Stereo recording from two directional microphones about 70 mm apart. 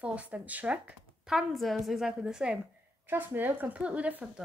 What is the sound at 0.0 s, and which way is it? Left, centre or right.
Speech, centre.